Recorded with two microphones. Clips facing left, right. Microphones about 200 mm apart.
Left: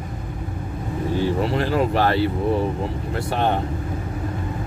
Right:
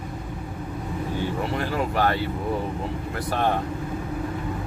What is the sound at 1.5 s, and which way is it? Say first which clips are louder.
Speech: left 5 dB; 35° left (ahead or behind).